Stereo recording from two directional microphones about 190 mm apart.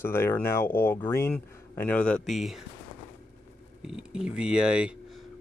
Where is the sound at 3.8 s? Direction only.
5° right (ahead or behind).